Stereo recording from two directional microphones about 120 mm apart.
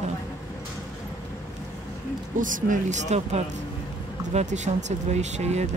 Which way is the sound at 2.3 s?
90° right.